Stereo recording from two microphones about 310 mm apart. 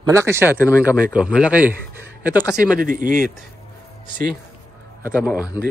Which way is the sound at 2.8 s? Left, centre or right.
Right.